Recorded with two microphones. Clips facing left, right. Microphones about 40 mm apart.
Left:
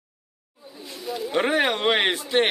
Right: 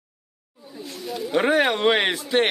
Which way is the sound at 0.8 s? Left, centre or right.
Centre.